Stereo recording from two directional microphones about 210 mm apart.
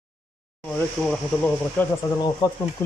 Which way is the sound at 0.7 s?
5° left (ahead or behind).